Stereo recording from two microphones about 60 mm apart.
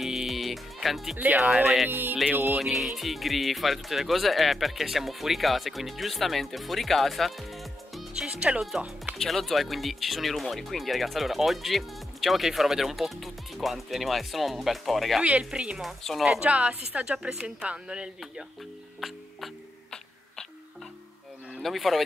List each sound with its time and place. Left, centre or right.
0.0 s music: centre
1.1 s speech: right
1.6 s speech: centre
1.9 s speech: right
2.6 s speech: centre
8.1 s music: centre
9.2 s speech: centre
15.2 s speech: centre
16.0 s speech: centre
16.3 s a woman's voice: right
18.9 s music: centre
21.5 s speech: centre